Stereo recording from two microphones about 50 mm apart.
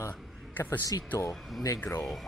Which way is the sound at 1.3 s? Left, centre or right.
Centre.